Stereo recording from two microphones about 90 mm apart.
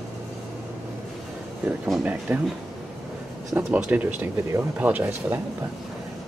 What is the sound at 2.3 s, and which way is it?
Speech, 20° right (ahead or behind).